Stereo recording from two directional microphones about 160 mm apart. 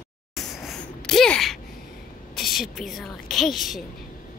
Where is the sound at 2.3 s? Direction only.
Centre (ahead or behind).